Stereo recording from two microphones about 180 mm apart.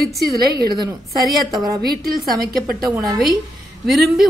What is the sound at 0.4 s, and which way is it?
Speech, 60° right (ahead or behind).